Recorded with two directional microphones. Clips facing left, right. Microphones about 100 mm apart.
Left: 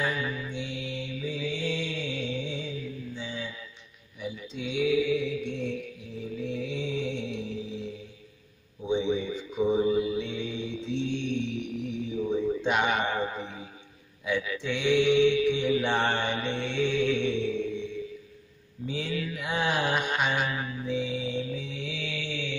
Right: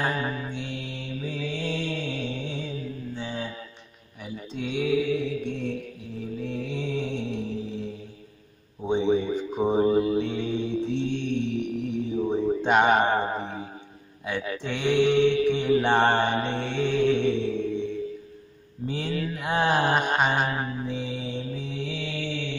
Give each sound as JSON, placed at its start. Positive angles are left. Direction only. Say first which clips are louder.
{"t": 0.0, "sound": "mantra", "louder": "right 3 dB", "side_deg": -40}
{"t": 8.8, "sound": "mantra", "louder": "right 4 dB", "side_deg": -45}
{"t": 12.1, "sound": "a sound", "louder": "right 2 dB", "side_deg": -40}
{"t": 14.2, "sound": "mantra", "louder": "even", "side_deg": -45}
{"t": 18.9, "sound": "mantra", "louder": "right 3 dB", "side_deg": -40}